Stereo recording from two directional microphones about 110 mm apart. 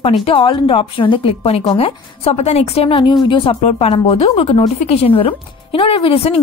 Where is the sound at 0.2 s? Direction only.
55° left (ahead or behind).